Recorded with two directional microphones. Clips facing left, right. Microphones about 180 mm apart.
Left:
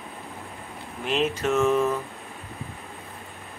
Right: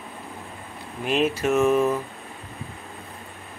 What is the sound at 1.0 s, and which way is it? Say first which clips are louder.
Speech: right 2 dB; 10° right (ahead or behind).